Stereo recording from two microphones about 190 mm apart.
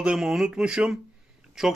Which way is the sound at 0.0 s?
5° right (ahead or behind).